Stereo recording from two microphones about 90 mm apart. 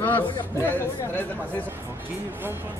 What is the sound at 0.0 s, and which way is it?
Chatter, 20° left (ahead or behind).